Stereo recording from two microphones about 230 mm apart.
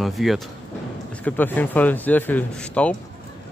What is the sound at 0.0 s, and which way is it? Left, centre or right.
Speech, centre.